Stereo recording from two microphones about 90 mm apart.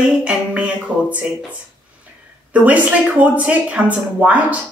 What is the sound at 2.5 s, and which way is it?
A woman's voice, 15° right (ahead or behind).